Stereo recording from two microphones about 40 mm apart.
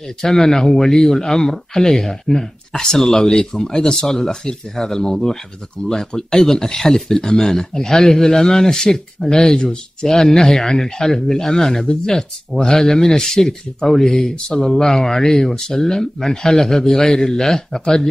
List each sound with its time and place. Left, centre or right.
0.2 s speech: centre